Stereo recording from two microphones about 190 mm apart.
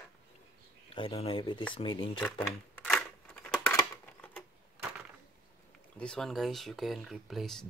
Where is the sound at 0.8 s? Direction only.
30° left (ahead or behind).